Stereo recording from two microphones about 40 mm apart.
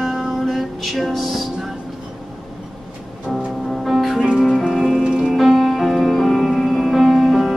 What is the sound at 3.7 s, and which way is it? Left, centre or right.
Music, centre.